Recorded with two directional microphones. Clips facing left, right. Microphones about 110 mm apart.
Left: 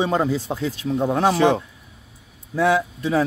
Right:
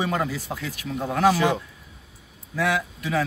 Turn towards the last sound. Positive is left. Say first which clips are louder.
# left 5 dB
turn(degrees=30)  # may be behind; listen again after turning